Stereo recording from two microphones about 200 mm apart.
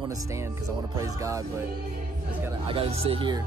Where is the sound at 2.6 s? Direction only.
30° right (ahead or behind).